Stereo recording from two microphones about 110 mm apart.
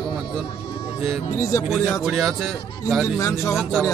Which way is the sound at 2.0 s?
Centre (ahead or behind).